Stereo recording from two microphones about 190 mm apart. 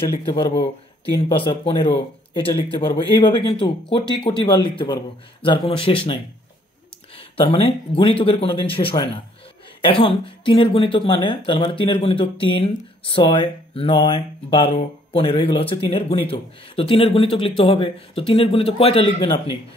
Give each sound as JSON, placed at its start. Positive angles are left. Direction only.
{"t": 0.2, "sound": "speech", "side_deg": 30}
{"t": 7.2, "sound": "speech", "side_deg": 25}